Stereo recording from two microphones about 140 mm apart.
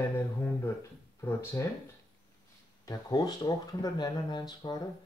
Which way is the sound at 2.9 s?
25° left (ahead or behind).